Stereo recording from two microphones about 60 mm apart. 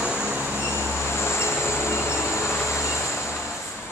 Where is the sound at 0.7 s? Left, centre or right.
Left.